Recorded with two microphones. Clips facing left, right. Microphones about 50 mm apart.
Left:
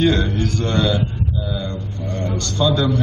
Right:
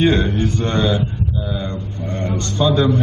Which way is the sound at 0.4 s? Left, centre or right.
Right.